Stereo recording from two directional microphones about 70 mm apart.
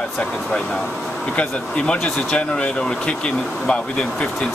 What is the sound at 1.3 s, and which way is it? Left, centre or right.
Speech, centre.